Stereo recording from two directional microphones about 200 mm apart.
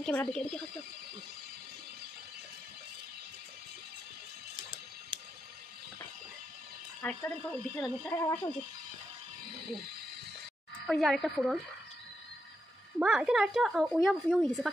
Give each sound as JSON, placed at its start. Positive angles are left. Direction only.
{"t": 0.0, "sound": "a woman's voice", "side_deg": 5}
{"t": 5.1, "sound": "a sound", "side_deg": -25}
{"t": 7.0, "sound": "speech", "side_deg": 5}
{"t": 10.9, "sound": "a woman's voice", "side_deg": 0}
{"t": 13.0, "sound": "a woman's voice", "side_deg": -5}